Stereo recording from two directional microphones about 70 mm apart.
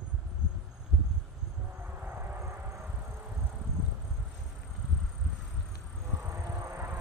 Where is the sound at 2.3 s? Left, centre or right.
Right.